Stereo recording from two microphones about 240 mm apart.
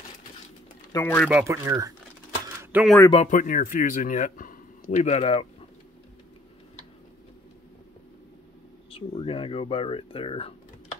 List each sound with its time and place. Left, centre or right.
0.9 s speech: centre
1.3 s speech: centre
2.6 s a sound: centre
3.1 s a man's voice: left
8.9 s speech: left